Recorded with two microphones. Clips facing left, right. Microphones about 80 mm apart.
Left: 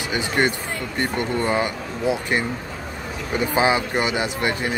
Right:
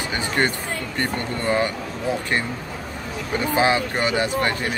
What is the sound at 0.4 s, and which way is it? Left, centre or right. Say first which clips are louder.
Speech: left 1 dB; centre.